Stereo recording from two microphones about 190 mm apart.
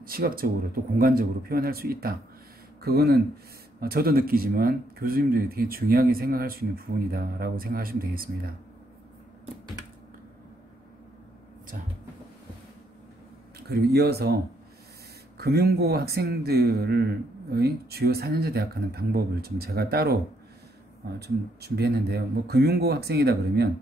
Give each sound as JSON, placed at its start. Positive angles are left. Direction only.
{"t": 0.0, "sound": "speech", "side_deg": -50}
{"t": 13.7, "sound": "speech", "side_deg": -55}
{"t": 21.2, "sound": "speech", "side_deg": -60}